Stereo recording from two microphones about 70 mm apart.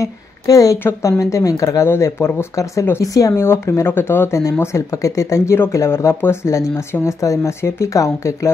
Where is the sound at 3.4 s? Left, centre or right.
Left.